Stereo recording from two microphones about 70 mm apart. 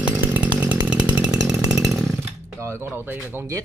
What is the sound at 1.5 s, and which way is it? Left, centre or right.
Chainsaw, centre.